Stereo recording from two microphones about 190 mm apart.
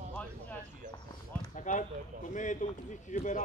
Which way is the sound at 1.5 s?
40° left (ahead or behind).